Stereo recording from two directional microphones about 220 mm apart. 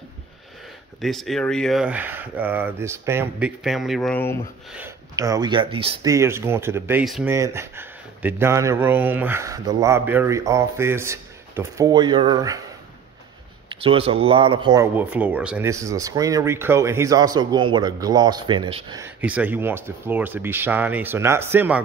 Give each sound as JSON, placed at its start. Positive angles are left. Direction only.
{"t": 1.0, "sound": "speech", "side_deg": 0}
{"t": 4.7, "sound": "speech", "side_deg": -15}
{"t": 6.0, "sound": "speech", "side_deg": -10}
{"t": 13.7, "sound": "speech", "side_deg": -25}